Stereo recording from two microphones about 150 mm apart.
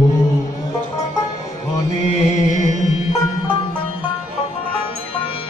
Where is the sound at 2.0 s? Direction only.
50° left (ahead or behind).